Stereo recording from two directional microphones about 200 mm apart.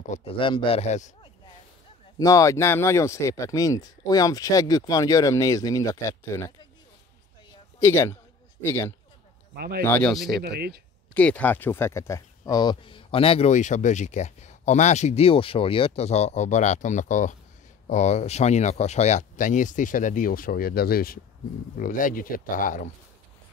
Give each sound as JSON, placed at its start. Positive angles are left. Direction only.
{"t": 0.1, "sound": "speech", "side_deg": 30}
{"t": 2.1, "sound": "speech", "side_deg": 15}
{"t": 7.8, "sound": "speech", "side_deg": 15}
{"t": 9.6, "sound": "speech", "side_deg": -50}
{"t": 9.8, "sound": "speech", "side_deg": 5}
{"t": 10.4, "sound": "speech", "side_deg": -50}
{"t": 11.1, "sound": "speech", "side_deg": 5}